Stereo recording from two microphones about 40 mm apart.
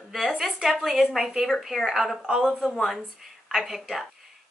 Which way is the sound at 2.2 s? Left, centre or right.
Centre.